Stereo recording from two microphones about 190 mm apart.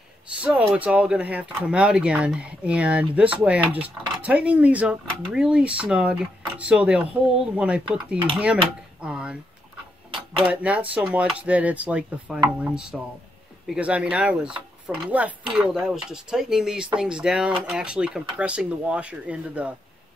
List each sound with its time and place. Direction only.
0.4 s speech: 5° right (ahead or behind)
10.4 s speech: 10° right (ahead or behind)